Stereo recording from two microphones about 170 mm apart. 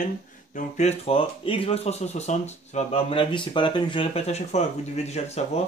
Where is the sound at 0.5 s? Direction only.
45° left (ahead or behind).